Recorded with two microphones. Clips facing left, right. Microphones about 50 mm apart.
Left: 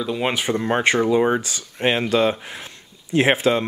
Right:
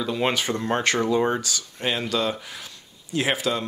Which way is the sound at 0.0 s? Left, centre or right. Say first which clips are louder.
Left 1 dB; centre.